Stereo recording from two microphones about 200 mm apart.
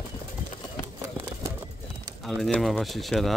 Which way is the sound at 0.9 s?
15° right (ahead or behind).